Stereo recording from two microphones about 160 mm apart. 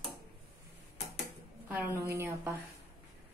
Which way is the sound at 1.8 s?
15° right (ahead or behind).